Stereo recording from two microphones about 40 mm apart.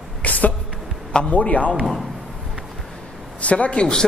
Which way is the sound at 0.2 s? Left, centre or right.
Left.